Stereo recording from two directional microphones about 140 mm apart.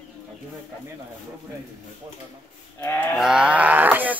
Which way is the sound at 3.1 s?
5° right (ahead or behind).